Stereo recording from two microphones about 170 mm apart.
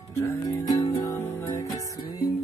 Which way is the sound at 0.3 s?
20° left (ahead or behind).